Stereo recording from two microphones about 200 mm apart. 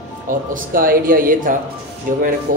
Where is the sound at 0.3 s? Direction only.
45° right (ahead or behind).